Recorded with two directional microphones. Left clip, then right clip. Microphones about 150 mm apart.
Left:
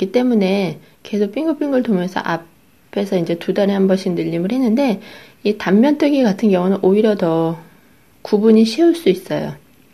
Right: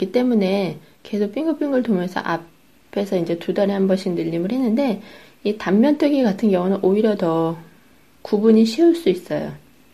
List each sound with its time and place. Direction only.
0.0 s speech: 15° left (ahead or behind)